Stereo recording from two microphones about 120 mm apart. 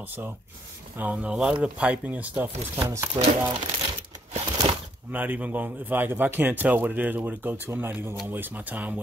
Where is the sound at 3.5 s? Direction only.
40° right (ahead or behind).